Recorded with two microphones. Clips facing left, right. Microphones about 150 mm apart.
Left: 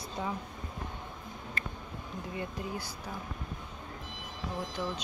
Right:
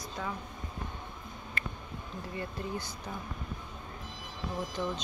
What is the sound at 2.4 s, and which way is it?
Speech, 15° left (ahead or behind).